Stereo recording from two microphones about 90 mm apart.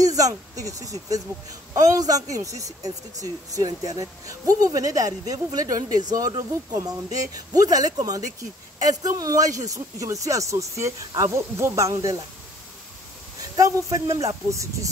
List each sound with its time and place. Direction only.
0.0 s speech: 40° right (ahead or behind)
13.6 s speech: 40° right (ahead or behind)